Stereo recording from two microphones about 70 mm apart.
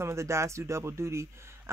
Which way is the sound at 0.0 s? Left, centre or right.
Right.